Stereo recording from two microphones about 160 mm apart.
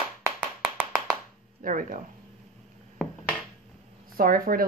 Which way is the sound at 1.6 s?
60° right (ahead or behind).